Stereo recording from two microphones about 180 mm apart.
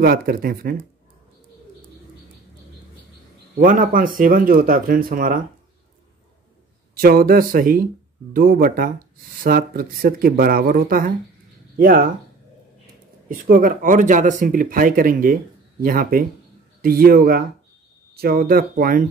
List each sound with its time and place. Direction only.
0.0 s speech: 55° right (ahead or behind)
3.5 s speech: 50° right (ahead or behind)
7.0 s speech: 55° right (ahead or behind)
13.3 s speech: 50° right (ahead or behind)